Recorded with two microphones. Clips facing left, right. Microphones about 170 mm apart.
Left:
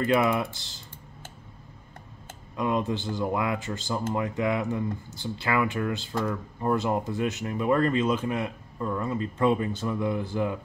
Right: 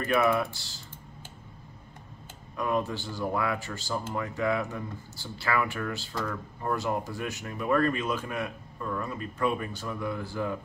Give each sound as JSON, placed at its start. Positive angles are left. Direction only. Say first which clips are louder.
{"t": 0.2, "sound": "speech", "louder": "even", "side_deg": 20}
{"t": 2.5, "sound": "speech", "louder": "left 2 dB", "side_deg": 20}